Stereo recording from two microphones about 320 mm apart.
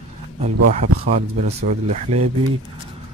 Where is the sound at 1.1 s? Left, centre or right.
Right.